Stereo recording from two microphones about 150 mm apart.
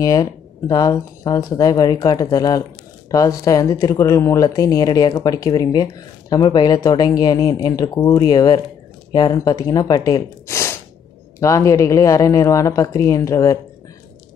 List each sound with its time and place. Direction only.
0.0 s speech: 25° left (ahead or behind)